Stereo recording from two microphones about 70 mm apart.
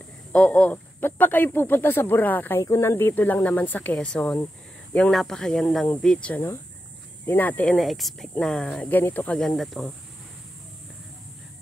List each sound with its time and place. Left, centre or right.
0.3 s speech: centre
2.6 s speech: left
3.2 s speech: left
3.9 s speech: centre
7.2 s speech: left
7.6 s speech: centre
8.8 s speech: left
9.4 s speech: centre